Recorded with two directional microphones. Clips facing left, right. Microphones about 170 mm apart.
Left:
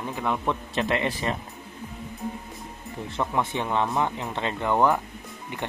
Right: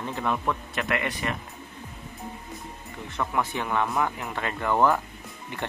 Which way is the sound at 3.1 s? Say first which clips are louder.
Left 1 dB; 25° left (ahead or behind).